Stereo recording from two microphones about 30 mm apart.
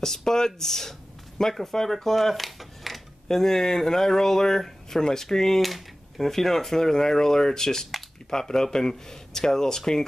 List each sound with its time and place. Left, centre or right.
0.0 s speech: centre
3.3 s speech: centre
5.6 s speech: centre